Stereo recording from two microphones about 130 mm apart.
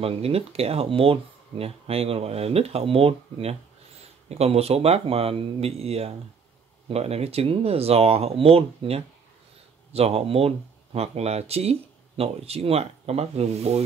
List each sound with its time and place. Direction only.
0.0 s speech: 50° right (ahead or behind)